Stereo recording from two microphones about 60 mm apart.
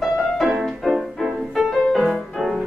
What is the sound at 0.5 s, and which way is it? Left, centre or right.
Music, centre.